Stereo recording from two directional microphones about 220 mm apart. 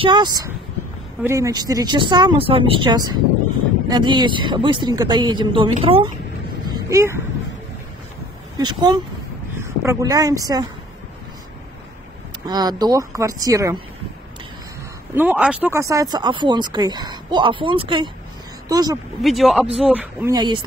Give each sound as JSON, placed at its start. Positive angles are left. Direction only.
{"t": 0.0, "sound": "speech", "side_deg": -20}
{"t": 6.6, "sound": "a sound", "side_deg": -15}
{"t": 8.5, "sound": "speech", "side_deg": -20}
{"t": 12.4, "sound": "speech", "side_deg": -20}
{"t": 15.1, "sound": "speech", "side_deg": -5}
{"t": 19.2, "sound": "speech", "side_deg": 0}
{"t": 20.3, "sound": "speech", "side_deg": -20}